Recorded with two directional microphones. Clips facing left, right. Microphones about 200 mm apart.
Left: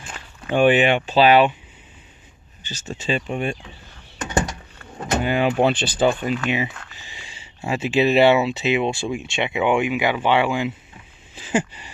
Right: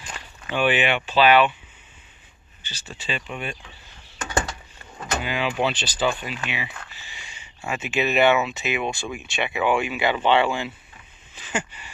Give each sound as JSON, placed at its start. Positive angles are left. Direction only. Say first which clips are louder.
{"t": 0.5, "sound": "speech", "louder": "left 6 dB", "side_deg": 45}
{"t": 2.7, "sound": "speech", "louder": "left 7 dB", "side_deg": 45}
{"t": 4.3, "sound": "a sound", "louder": "left 3 dB", "side_deg": 25}
{"t": 5.2, "sound": "speech", "louder": "left 6 dB", "side_deg": 50}
{"t": 7.2, "sound": "speech", "louder": "left 4 dB", "side_deg": 30}
{"t": 11.4, "sound": "a sound", "louder": "left 7 dB", "side_deg": 35}